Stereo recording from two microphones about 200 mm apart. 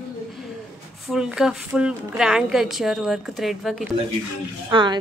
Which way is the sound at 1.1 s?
5° right (ahead or behind).